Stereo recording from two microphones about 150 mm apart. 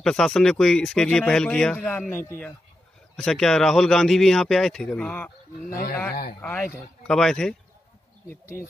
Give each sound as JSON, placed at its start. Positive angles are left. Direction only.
{"t": 0.0, "sound": "speech", "side_deg": 5}
{"t": 3.2, "sound": "speech", "side_deg": 5}
{"t": 5.7, "sound": "speech", "side_deg": 75}
{"t": 6.4, "sound": "speech", "side_deg": 15}
{"t": 7.1, "sound": "speech", "side_deg": 5}